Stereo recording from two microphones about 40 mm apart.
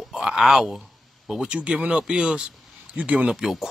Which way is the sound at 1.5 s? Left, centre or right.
Right.